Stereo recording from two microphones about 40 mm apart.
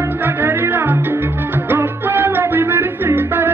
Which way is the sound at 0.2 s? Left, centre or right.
Right.